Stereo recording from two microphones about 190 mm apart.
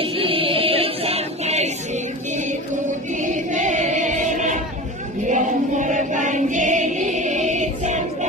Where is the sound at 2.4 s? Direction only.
40° right (ahead or behind).